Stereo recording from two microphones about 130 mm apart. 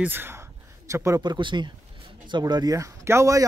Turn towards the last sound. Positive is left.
turn(degrees=-20)  # may be behind; listen again after turning